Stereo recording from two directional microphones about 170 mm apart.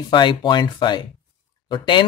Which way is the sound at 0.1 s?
25° left (ahead or behind).